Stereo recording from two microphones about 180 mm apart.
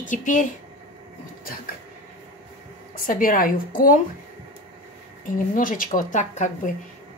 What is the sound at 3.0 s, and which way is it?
Speech, 50° left (ahead or behind).